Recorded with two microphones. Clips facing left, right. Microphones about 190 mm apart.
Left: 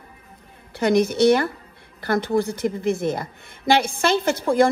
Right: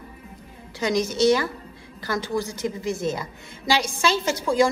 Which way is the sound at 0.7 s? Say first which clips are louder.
Left 5 dB; 60° left (ahead or behind).